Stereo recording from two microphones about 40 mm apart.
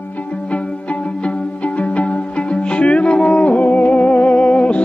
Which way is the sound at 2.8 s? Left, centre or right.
Left.